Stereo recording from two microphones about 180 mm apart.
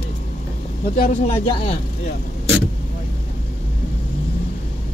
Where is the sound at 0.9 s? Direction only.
35° left (ahead or behind).